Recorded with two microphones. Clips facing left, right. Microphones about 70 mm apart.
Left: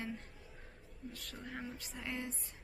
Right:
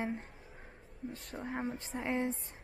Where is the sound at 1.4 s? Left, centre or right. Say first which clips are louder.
Right 8 dB; right.